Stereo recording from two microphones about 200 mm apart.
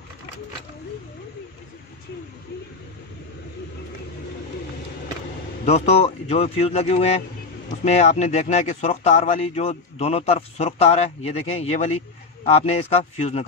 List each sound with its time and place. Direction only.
5.7 s speech: 35° left (ahead or behind)